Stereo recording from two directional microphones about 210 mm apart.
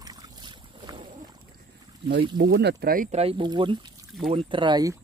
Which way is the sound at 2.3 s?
45° right (ahead or behind).